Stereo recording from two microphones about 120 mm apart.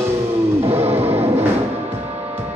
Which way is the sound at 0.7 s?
60° right (ahead or behind).